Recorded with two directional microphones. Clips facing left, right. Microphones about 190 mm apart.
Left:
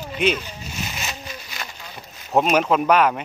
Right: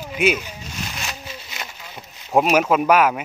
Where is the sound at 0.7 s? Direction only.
5° left (ahead or behind).